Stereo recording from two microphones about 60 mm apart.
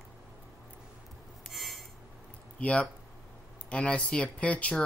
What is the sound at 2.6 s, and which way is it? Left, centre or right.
Speech, centre.